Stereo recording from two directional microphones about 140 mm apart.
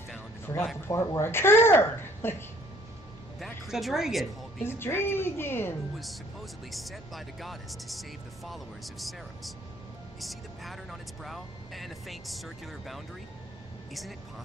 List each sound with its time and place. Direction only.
0.5 s a woman's voice: 25° left (ahead or behind)
3.3 s speech: centre (ahead or behind)
4.6 s a woman's voice: 15° left (ahead or behind)
5.9 s speech: centre (ahead or behind)